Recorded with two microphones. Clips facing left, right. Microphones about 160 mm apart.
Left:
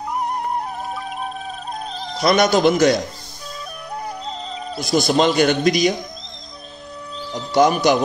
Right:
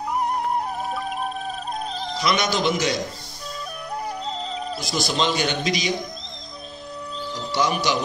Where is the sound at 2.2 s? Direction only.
55° left (ahead or behind).